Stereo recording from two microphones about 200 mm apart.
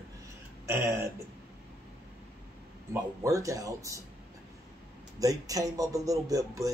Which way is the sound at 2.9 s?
15° right (ahead or behind).